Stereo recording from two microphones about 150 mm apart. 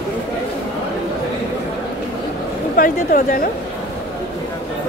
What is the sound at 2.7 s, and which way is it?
Speech, 70° left (ahead or behind).